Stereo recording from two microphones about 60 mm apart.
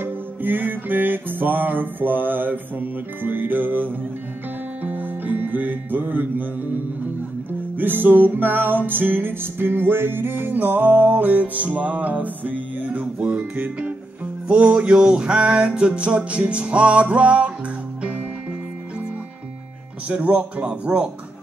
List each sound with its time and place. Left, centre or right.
0.0 s music: right
7.7 s music: right
20.1 s music: right